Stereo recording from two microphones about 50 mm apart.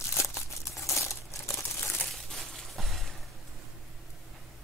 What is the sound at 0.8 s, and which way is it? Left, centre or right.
Crumpling, left.